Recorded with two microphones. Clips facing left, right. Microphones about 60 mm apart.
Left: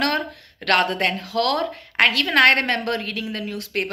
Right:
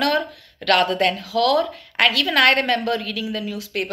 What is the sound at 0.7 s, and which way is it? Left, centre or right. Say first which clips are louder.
A woman's voice: right 2 dB; left.